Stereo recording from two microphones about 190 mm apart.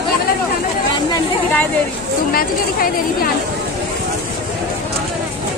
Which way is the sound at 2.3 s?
50° left (ahead or behind).